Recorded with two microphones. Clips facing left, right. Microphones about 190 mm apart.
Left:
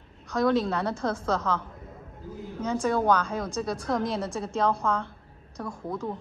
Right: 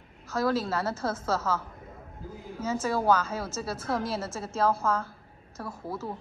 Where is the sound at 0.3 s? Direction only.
5° right (ahead or behind).